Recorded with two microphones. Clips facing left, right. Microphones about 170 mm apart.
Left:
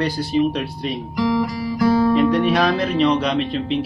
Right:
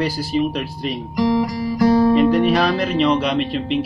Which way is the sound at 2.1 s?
Centre (ahead or behind).